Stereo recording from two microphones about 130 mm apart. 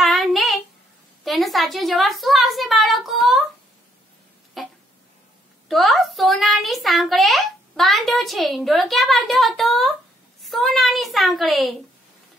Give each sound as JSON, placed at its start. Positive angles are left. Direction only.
{"t": 0.0, "sound": "child singing", "side_deg": 0}
{"t": 1.2, "sound": "a woman's voice", "side_deg": 0}
{"t": 4.6, "sound": "a sound", "side_deg": 0}
{"t": 5.7, "sound": "a child's voice", "side_deg": 0}